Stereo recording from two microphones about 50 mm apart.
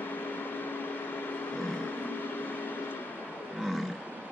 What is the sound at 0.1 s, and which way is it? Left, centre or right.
Microwave oven, left.